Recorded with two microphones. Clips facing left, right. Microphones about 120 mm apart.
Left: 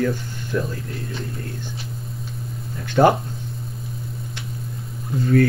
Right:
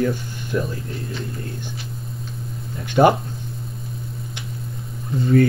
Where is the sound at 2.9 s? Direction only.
15° right (ahead or behind).